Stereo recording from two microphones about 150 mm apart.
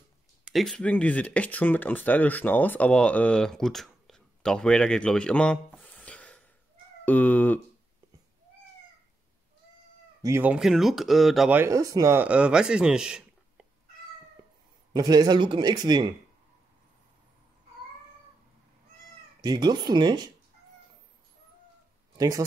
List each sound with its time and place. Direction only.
0.5 s speech: centre (ahead or behind)
10.2 s speech: 15° right (ahead or behind)
11.5 s speech: 20° right (ahead or behind)
12.2 s speech: 10° right (ahead or behind)
14.9 s speech: 25° right (ahead or behind)
19.4 s speech: 30° right (ahead or behind)
22.1 s a sound: 25° right (ahead or behind)